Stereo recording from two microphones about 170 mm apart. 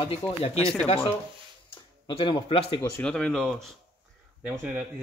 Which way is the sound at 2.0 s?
30° left (ahead or behind).